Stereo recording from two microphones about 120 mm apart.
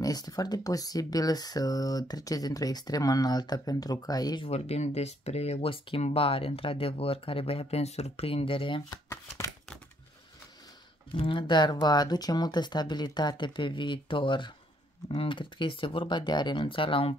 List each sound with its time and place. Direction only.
0.0 s speech: 30° left (ahead or behind)
4.5 s speech: 60° left (ahead or behind)
11.1 s speech: 45° left (ahead or behind)